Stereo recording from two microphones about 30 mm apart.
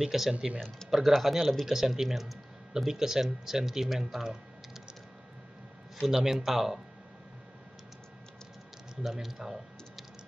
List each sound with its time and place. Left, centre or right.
0.0 s speech: centre
0.6 s speech: centre
0.8 s speech: centre
6.0 s speech: centre
9.0 s speech: centre